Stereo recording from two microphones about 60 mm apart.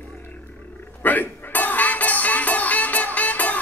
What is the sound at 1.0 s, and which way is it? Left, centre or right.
Music, left.